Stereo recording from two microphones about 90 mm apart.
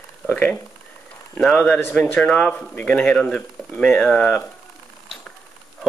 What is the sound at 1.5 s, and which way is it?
Speech, 15° left (ahead or behind).